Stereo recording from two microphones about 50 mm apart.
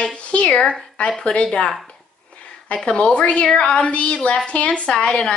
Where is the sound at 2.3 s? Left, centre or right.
Left.